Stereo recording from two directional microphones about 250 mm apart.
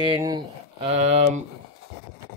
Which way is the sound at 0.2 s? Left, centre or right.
Centre.